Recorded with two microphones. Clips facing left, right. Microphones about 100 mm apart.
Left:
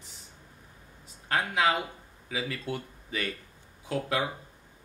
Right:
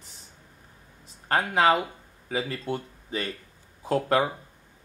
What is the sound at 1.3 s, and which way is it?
Speech, 45° right (ahead or behind).